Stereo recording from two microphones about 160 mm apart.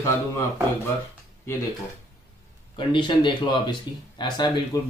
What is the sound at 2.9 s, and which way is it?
Speech, 30° left (ahead or behind).